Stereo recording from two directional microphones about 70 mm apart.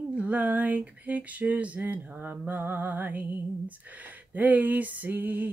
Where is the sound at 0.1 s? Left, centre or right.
Centre.